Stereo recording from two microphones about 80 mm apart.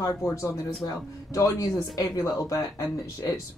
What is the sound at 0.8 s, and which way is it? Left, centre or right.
Speech, left.